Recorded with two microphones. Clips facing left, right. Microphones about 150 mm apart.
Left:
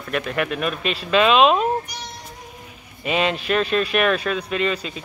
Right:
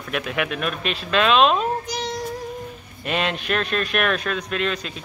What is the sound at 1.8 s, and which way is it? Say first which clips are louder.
Music: right 8 dB; 90° right.